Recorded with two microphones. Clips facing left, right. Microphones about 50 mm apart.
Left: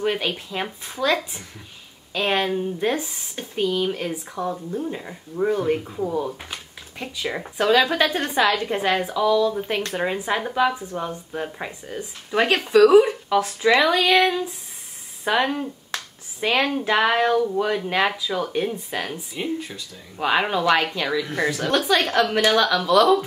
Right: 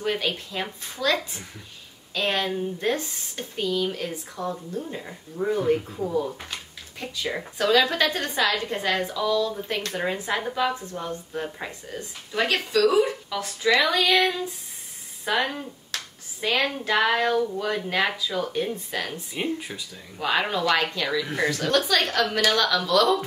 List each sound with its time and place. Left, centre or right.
0.0 s speech: centre
12.3 s speech: left
19.3 s speech: centre
20.2 s speech: centre
21.2 s speech: centre